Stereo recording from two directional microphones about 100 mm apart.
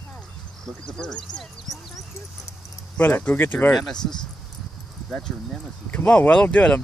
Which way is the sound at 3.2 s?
15° left (ahead or behind).